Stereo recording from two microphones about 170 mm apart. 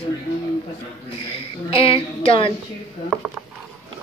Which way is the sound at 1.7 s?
30° left (ahead or behind).